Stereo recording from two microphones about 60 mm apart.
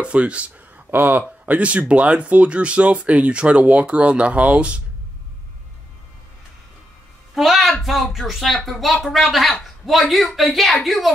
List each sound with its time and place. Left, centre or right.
0.0 s speech: right
0.8 s speech: right
1.4 s speech: right
7.3 s a sound: centre
7.8 s speech: centre